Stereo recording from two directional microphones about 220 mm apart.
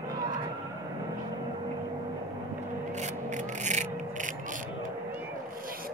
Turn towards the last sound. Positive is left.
turn(degrees=-35)  # may be behind; listen again after turning